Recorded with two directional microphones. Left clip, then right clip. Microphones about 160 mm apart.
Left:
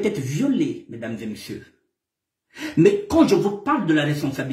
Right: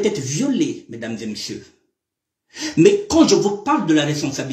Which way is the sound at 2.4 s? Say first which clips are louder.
Right 3 dB; 5° left (ahead or behind).